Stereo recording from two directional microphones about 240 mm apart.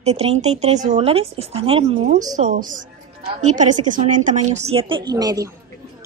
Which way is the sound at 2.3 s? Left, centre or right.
Right.